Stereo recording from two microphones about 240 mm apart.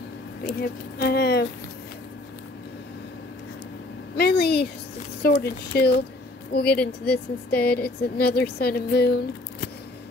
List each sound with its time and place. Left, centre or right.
0.5 s speech: left
4.2 s speech: left